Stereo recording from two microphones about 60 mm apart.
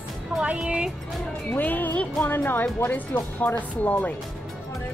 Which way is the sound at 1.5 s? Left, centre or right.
Left.